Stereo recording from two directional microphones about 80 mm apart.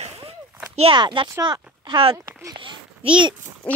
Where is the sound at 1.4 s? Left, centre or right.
Right.